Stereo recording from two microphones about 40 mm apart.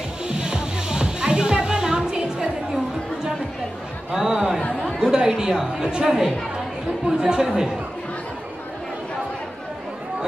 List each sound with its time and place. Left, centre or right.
0.3 s music: right
4.1 s chatter: centre
5.0 s a sound: centre
5.8 s a woman's voice: centre